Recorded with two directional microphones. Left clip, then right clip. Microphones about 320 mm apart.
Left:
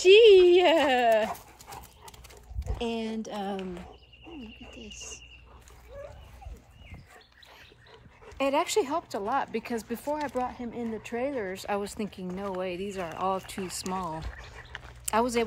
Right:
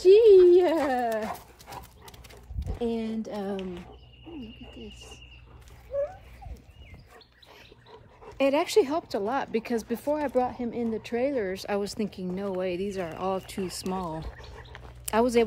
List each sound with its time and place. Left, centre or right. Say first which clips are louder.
0.0 s a sound: even; left
0.8 s dog: left 4 dB; left
1.3 s dog: right 1 dB; centre
2.8 s speech: right 2 dB; centre
8.4 s speech: right 3 dB; centre